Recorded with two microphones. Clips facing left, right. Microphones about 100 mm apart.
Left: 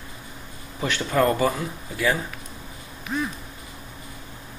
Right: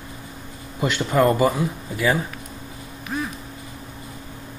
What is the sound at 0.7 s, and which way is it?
Speech, 15° right (ahead or behind).